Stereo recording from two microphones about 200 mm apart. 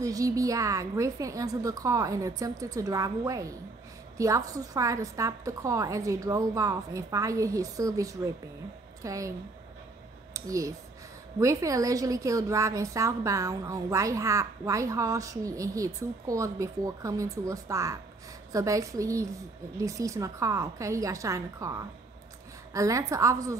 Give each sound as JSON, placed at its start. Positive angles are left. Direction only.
{"t": 0.0, "sound": "a woman's voice", "side_deg": -15}
{"t": 10.3, "sound": "a woman's voice", "side_deg": -15}